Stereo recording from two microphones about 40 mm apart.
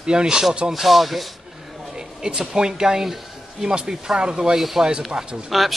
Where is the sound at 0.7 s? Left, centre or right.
Centre.